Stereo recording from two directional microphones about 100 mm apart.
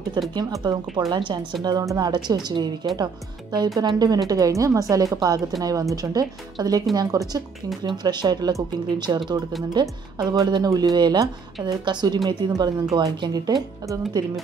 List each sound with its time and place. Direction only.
0.3 s speech: 45° right (ahead or behind)
10.3 s speech: 40° right (ahead or behind)